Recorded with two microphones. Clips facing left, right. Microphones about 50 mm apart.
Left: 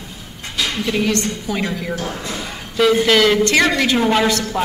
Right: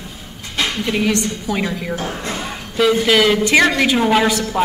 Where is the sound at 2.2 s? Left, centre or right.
Right.